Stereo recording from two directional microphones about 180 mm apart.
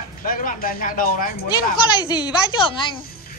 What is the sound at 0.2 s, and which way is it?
Speech, 50° left (ahead or behind).